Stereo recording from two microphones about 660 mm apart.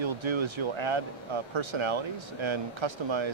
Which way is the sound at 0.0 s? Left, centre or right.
Right.